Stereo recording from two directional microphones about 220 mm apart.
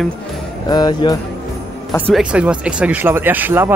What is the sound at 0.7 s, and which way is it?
Jingle bell, 20° left (ahead or behind).